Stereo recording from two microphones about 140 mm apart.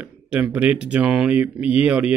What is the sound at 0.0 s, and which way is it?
Speech, 10° right (ahead or behind).